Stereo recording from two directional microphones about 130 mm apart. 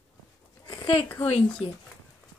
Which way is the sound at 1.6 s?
55° left (ahead or behind).